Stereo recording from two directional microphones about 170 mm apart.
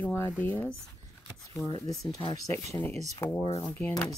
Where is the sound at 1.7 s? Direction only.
25° left (ahead or behind).